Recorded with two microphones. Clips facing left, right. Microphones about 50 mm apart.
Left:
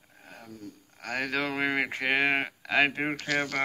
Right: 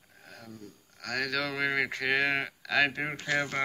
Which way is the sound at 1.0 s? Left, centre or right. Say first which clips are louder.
Left 1 dB; left.